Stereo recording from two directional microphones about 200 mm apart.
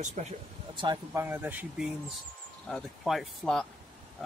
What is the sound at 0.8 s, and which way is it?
Speech, 20° right (ahead or behind).